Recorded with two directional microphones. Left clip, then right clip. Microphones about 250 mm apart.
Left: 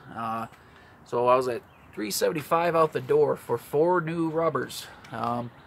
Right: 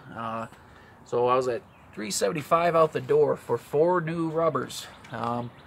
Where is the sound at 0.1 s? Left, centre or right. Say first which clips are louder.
Left 2 dB; centre.